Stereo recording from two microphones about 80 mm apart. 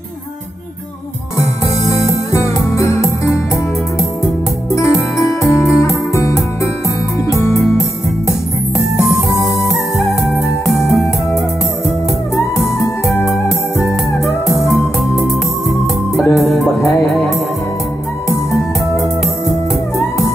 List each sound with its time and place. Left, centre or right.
1.9 s music: left
4.7 s music: left
10.7 s music: left